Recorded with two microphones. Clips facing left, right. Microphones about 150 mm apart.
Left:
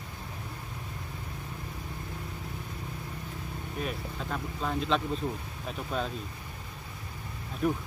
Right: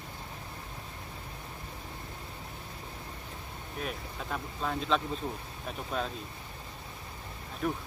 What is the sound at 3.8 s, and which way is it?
Speech, centre (ahead or behind).